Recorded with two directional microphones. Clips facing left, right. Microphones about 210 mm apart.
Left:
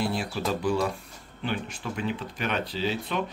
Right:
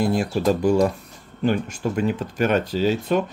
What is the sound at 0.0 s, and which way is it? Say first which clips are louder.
Speech: right 8 dB; 45° right (ahead or behind).